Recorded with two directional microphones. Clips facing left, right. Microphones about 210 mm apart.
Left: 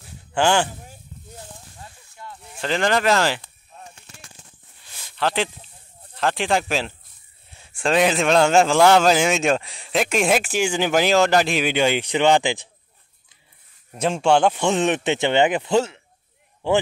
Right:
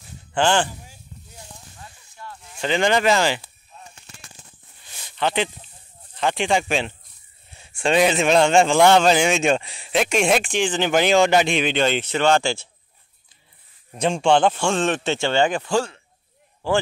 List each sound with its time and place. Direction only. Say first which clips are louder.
0.3 s speech: left 1 dB; 10° left (ahead or behind)
2.3 s speech: right 2 dB; centre (ahead or behind)
5.1 s speech: even; centre (ahead or behind)
7.7 s a man's voice: right 1 dB; centre (ahead or behind); by 12.6 s 15° left (ahead or behind)
13.9 s a man's voice: even; 5° left (ahead or behind); by 16.8 s 25° left (ahead or behind)